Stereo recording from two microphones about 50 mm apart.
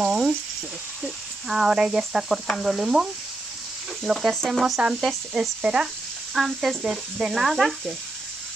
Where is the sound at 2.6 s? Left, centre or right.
Centre.